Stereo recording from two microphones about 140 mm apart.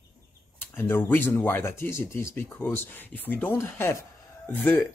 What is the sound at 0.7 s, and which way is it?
Speech, 15° left (ahead or behind).